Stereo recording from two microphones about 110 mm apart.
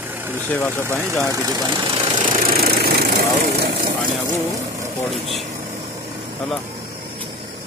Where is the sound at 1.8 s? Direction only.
45° right (ahead or behind).